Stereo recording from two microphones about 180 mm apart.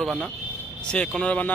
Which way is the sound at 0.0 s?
Centre (ahead or behind).